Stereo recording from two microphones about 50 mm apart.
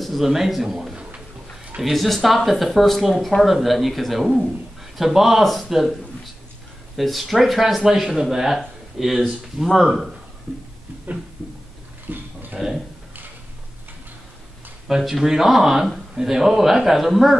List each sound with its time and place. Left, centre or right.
0.0 s a man's voice: centre
7.0 s a man's voice: centre
12.1 s a sound: right
12.5 s speech: centre
14.9 s speech: centre